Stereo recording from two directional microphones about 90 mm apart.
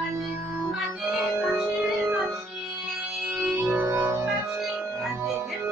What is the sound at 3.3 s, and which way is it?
Music, 10° right (ahead or behind).